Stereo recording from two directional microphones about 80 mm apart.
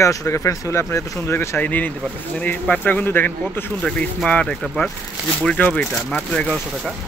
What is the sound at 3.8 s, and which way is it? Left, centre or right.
Speech, centre.